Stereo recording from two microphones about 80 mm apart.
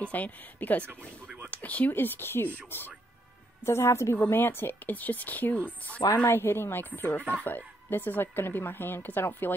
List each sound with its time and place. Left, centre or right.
0.0 s a woman's voice: centre